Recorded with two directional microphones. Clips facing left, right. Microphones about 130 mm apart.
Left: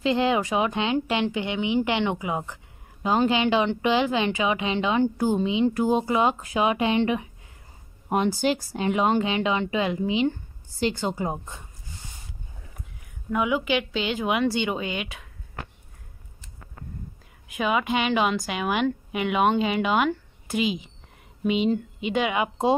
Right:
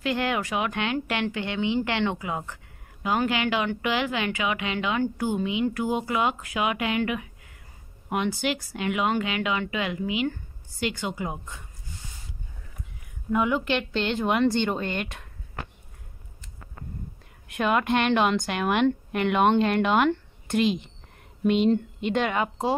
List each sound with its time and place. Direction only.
0.0 s a woman's voice: 20° left (ahead or behind)
13.3 s a woman's voice: 5° left (ahead or behind)
17.5 s a woman's voice: centre (ahead or behind)